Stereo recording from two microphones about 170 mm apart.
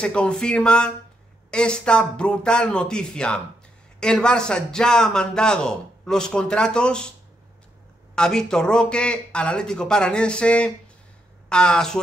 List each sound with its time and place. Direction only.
0.0 s a man's voice: 5° left (ahead or behind)
8.1 s a man's voice: 5° left (ahead or behind)